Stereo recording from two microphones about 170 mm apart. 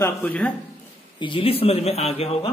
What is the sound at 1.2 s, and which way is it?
Speech, 30° left (ahead or behind).